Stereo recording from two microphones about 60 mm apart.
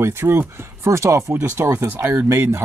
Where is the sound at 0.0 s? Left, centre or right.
Right.